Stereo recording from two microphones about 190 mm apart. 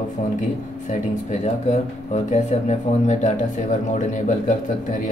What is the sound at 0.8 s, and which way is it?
Speech, 35° left (ahead or behind).